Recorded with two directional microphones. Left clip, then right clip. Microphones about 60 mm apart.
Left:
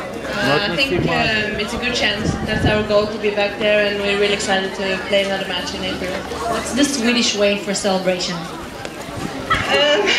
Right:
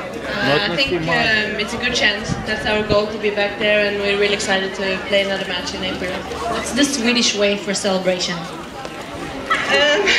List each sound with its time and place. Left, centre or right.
0.4 s a man's voice: centre
6.7 s a man's voice: centre
9.7 s speech: centre